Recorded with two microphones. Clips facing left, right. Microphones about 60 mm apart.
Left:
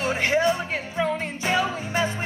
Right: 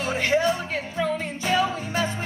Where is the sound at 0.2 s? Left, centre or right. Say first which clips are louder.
Even; centre.